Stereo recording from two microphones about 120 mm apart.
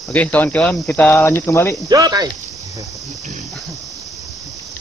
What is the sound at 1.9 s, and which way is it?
Speech, 30° right (ahead or behind).